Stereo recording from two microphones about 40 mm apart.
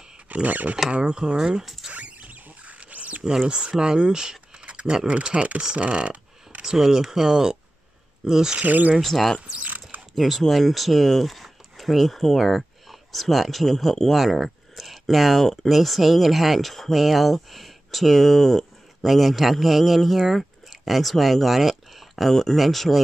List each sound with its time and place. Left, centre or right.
0.3 s speech: right
0.8 s speech: right
1.9 s rodents: right
3.3 s speech: centre
4.6 s a sound: right
5.0 s speech: right
6.6 s speech: centre
8.6 s speech: right
9.0 s speech: centre
9.5 s speech: right
10.1 s speech: centre